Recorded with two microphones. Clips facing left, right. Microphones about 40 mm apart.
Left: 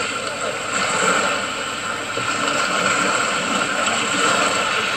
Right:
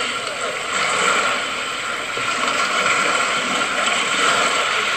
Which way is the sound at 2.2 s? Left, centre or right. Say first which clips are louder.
Right 1 dB; right.